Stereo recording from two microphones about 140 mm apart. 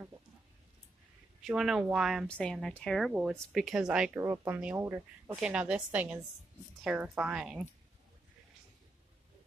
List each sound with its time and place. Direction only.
1.4 s speech: 5° right (ahead or behind)
4.2 s a woman's voice: 20° right (ahead or behind)